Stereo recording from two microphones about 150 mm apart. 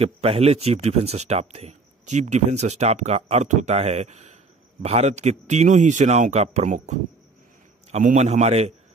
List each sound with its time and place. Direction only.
0.0 s speech: 40° right (ahead or behind)